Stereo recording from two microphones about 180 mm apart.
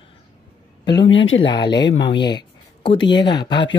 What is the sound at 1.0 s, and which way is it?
Speech, 90° left.